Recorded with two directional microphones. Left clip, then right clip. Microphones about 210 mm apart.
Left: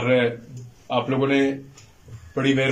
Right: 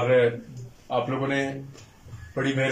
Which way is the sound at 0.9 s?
5° left (ahead or behind).